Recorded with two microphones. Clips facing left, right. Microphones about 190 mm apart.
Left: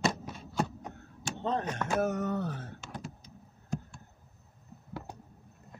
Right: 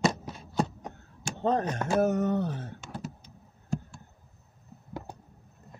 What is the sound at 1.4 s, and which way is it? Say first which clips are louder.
Speech: right 5 dB; 40° right (ahead or behind).